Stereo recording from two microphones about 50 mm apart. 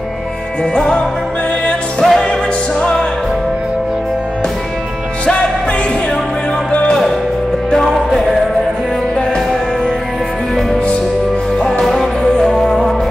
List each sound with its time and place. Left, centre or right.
0.7 s music: centre
5.2 s music: left
7.7 s music: centre
11.5 s music: centre